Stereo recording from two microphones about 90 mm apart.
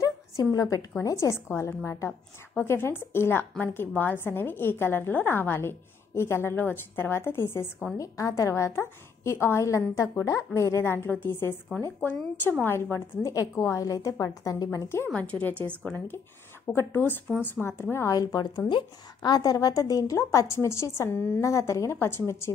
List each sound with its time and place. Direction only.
0.0 s a sound: 40° left (ahead or behind)
1.0 s a woman's voice: 30° left (ahead or behind)
12.9 s speech: 35° left (ahead or behind)
15.1 s a woman's voice: 15° left (ahead or behind)
16.6 s a woman's voice: 25° left (ahead or behind)
18.1 s speech: 45° left (ahead or behind)
18.7 s a woman's voice: 55° left (ahead or behind); by 22.5 s 30° left (ahead or behind)